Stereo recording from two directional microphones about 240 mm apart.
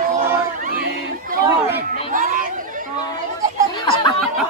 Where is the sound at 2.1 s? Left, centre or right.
Right.